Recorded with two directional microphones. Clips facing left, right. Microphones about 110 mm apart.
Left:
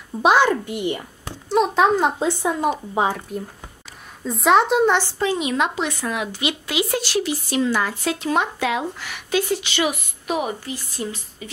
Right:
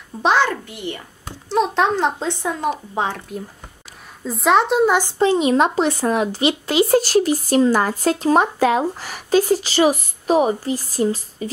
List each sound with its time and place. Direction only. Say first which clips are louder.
0.2 s a child's voice: left 1 dB; 10° left (ahead or behind)
1.5 s speech: left 1 dB; 5° left (ahead or behind)
5.2 s speech: right 6 dB; 30° right (ahead or behind)